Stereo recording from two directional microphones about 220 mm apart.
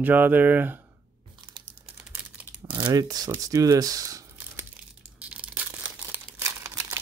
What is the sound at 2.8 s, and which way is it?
Speech, 15° right (ahead or behind).